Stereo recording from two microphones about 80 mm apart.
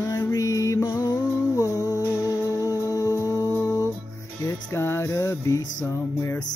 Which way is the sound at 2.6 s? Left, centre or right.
Left.